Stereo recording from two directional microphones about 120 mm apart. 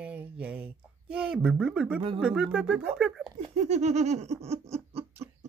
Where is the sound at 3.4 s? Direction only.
70° right (ahead or behind).